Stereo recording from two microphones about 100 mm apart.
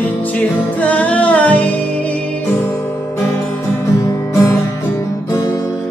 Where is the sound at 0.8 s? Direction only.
15° left (ahead or behind).